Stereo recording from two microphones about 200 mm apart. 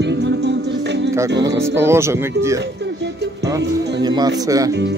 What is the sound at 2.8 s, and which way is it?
Music, 60° right (ahead or behind).